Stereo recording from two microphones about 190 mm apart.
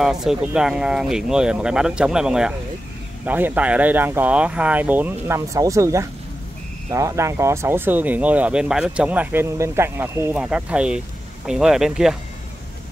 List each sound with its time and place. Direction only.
0.0 s speech: 5° right (ahead or behind)